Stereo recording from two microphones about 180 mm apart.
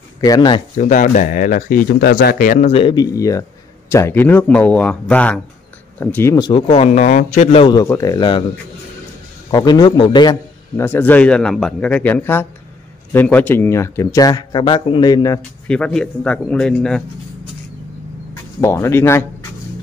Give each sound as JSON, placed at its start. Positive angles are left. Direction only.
{"t": 0.2, "sound": "speech", "side_deg": 20}
{"t": 0.7, "sound": "speech", "side_deg": 45}
{"t": 2.7, "sound": "speech", "side_deg": 25}
{"t": 7.6, "sound": "speech", "side_deg": 20}
{"t": 9.5, "sound": "speech", "side_deg": 25}
{"t": 10.8, "sound": "speech", "side_deg": 10}
{"t": 15.6, "sound": "speech", "side_deg": 5}
{"t": 18.6, "sound": "speech", "side_deg": 15}